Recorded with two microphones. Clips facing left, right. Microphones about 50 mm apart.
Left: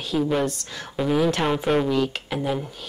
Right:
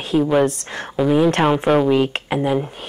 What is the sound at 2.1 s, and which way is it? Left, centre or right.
Speech, right.